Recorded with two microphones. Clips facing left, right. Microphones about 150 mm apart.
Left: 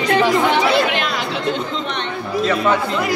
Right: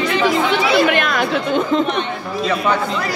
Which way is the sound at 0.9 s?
55° right (ahead or behind).